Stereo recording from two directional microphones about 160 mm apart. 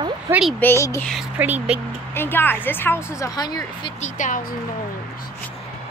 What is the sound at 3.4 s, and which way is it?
Speech, 25° left (ahead or behind).